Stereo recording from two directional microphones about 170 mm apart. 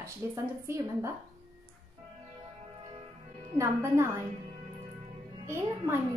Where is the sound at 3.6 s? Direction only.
15° right (ahead or behind).